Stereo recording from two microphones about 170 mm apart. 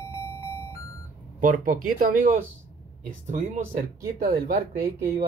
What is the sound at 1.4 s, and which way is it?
Speech, 55° right (ahead or behind).